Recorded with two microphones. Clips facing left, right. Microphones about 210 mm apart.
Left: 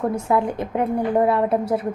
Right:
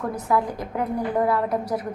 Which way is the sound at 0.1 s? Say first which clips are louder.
Left 3 dB; 25° left (ahead or behind).